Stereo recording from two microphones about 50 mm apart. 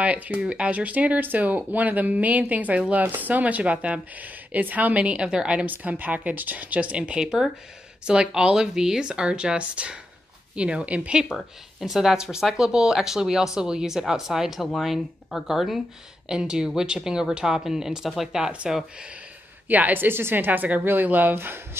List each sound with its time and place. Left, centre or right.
0.0 s speech: right
5.2 s speech: centre
5.7 s speech: right
7.2 s speech: centre
11.3 s speech: centre
19.7 s speech: right